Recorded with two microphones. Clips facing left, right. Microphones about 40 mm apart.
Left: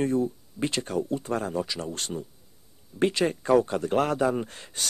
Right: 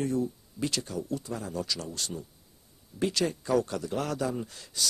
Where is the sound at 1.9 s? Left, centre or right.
Left.